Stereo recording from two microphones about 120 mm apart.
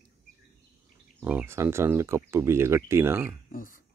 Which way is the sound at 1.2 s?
15° right (ahead or behind).